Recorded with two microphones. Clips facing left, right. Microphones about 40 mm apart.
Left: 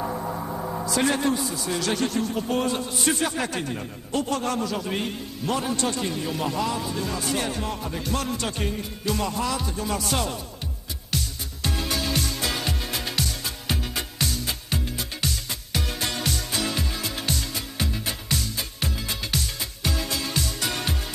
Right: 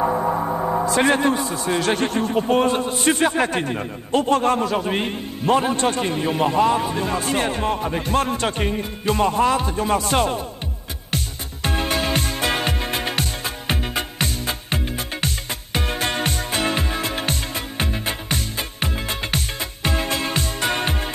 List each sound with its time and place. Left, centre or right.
0.0 s a man's voice: right
11.1 s music: right